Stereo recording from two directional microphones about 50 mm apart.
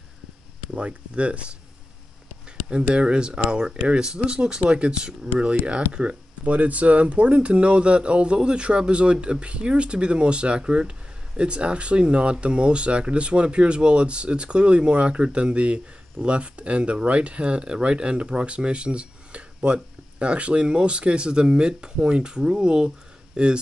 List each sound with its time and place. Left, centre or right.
0.7 s speech: right
2.7 s speech: centre